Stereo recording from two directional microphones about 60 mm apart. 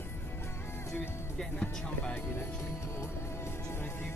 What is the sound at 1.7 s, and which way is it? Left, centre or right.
Speech, centre.